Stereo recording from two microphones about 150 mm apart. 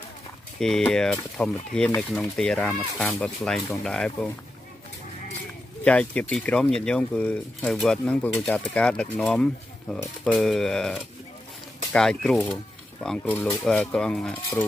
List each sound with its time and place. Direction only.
0.6 s speech: 5° left (ahead or behind)
5.9 s speech: 10° left (ahead or behind)